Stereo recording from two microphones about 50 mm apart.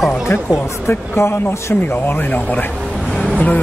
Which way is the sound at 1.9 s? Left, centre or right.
Left.